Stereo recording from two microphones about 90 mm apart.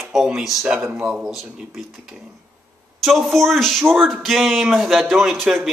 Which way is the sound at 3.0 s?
Centre (ahead or behind).